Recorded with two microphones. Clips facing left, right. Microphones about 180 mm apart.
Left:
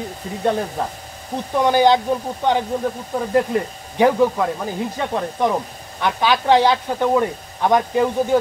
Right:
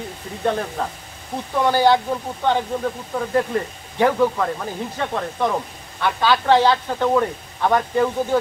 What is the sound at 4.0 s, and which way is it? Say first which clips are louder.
Speech: left 2 dB; 15° left (ahead or behind).